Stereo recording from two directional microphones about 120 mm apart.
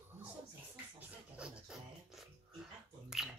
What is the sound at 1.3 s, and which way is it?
Music, 10° right (ahead or behind).